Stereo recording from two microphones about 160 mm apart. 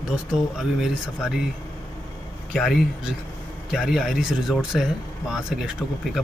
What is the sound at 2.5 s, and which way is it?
Speech, centre (ahead or behind).